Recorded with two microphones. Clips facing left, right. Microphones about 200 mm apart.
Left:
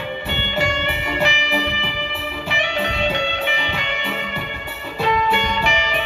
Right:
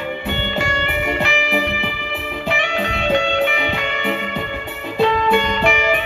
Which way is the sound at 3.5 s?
55° right (ahead or behind).